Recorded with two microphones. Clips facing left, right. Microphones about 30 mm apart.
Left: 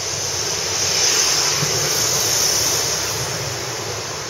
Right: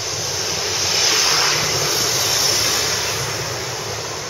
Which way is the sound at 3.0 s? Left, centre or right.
Centre.